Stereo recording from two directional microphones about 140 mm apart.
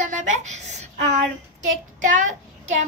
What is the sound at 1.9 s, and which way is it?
Speech, 65° right (ahead or behind).